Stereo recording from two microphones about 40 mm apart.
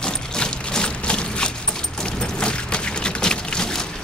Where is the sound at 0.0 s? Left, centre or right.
Left.